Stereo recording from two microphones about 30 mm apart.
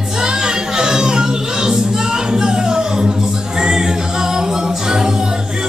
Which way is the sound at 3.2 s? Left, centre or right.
Right.